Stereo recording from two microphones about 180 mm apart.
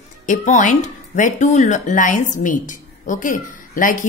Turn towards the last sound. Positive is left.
turn(degrees=50)  # may be behind; listen again after turning